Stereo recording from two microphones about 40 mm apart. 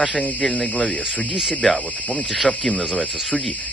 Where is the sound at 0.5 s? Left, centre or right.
Left.